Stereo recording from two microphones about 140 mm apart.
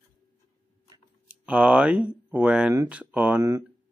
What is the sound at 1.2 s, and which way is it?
Speech, 10° right (ahead or behind).